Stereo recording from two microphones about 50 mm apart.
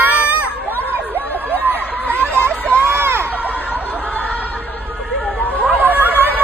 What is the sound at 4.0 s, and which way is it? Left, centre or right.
Chatter, left.